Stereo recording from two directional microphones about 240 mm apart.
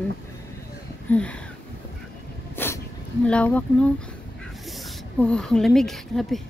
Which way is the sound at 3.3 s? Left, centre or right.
Centre.